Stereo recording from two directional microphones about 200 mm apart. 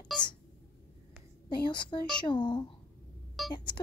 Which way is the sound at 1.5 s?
25° left (ahead or behind).